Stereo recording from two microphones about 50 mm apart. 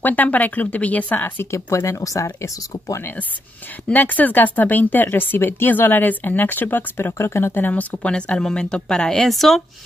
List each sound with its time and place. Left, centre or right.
0.0 s speech: left
1.1 s speech: left
1.5 s speech: left
3.9 s speech: left
7.6 s speech: left
8.4 s a woman's voice: centre